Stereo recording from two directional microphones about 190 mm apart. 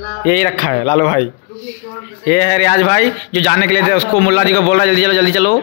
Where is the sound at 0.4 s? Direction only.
40° left (ahead or behind).